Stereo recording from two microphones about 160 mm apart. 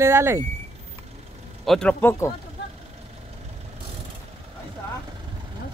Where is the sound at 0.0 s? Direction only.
15° right (ahead or behind).